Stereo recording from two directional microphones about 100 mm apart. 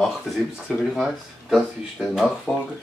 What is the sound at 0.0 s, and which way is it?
Speech, centre (ahead or behind).